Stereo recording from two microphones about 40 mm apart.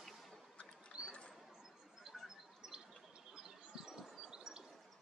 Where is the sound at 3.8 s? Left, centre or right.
Centre.